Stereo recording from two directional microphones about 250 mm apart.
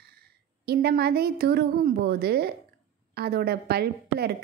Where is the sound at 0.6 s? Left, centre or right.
Right.